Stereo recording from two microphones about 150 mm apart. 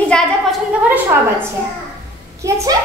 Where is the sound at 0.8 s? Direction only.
10° right (ahead or behind).